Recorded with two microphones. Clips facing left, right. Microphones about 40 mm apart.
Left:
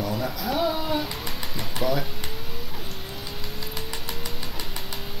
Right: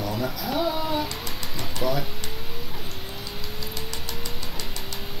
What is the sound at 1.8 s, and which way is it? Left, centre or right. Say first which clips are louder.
Speech: left 1 dB; centre.